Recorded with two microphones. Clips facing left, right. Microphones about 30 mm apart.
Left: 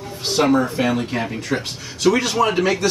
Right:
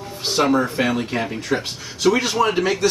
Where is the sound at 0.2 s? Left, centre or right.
Centre.